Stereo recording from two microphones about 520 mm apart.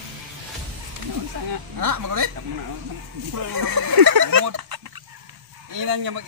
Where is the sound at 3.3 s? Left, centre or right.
Right.